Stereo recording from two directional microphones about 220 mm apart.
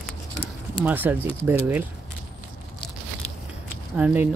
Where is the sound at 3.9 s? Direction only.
5° right (ahead or behind).